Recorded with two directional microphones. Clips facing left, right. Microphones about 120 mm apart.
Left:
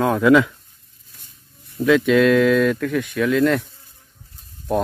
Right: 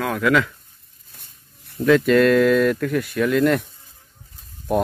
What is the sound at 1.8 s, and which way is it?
Speech, centre (ahead or behind).